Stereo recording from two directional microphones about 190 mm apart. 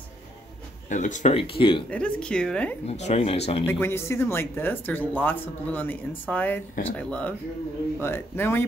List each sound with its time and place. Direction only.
0.8 s speech: 40° left (ahead or behind)
1.9 s speech: 5° left (ahead or behind)
2.9 s speech: 35° left (ahead or behind)
3.6 s speech: 10° left (ahead or behind)